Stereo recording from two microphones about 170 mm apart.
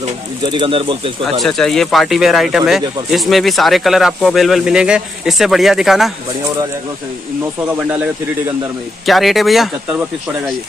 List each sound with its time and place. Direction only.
0.5 s speech: 30° right (ahead or behind)
1.4 s speech: 5° left (ahead or behind)
9.0 s speech: centre (ahead or behind)